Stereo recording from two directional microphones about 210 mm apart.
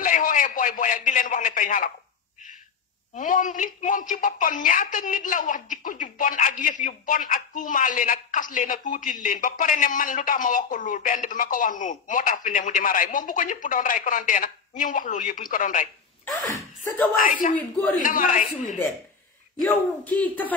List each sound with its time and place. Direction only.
0.0 s a man's voice: 40° left (ahead or behind)
3.2 s a woman's voice: 40° left (ahead or behind)
16.4 s speech: 15° left (ahead or behind)
17.2 s a woman's voice: 40° left (ahead or behind)
17.6 s a woman's voice: 5° left (ahead or behind)
18.0 s a woman's voice: 40° left (ahead or behind)
20.2 s a woman's voice: 10° left (ahead or behind)